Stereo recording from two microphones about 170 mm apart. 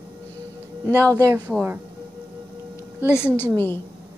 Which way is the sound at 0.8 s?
20° right (ahead or behind).